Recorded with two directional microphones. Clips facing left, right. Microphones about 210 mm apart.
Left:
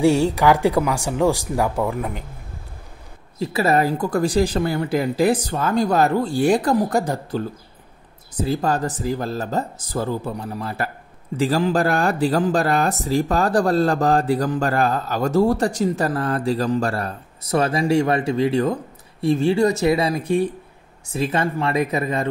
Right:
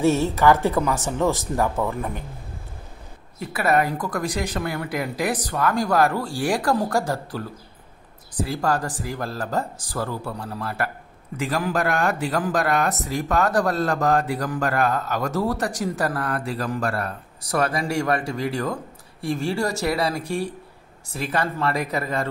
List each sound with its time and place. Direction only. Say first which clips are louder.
0.0 s speech: left 2 dB; 15° left (ahead or behind)
3.3 s speech: left 3 dB; 25° left (ahead or behind)
11.3 s speech: left 5 dB; 30° left (ahead or behind)